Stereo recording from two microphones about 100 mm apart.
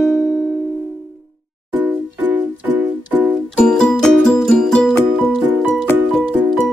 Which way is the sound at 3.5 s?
10° left (ahead or behind).